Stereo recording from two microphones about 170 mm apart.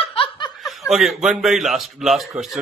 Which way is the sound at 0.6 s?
Centre (ahead or behind).